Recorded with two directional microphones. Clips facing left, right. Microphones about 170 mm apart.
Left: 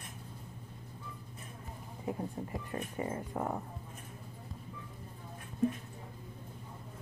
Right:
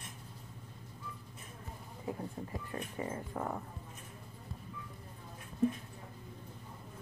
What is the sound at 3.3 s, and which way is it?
Speech, 15° left (ahead or behind).